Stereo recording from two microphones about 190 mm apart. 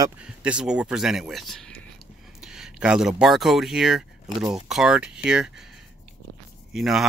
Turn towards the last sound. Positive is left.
turn(degrees=0)  # may be behind; listen again after turning